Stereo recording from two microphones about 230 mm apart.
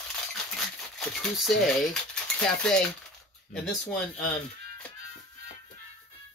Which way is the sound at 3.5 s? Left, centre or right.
Centre.